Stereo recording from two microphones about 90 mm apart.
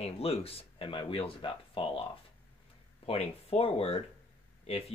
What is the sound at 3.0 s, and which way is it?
Speech, 90° left.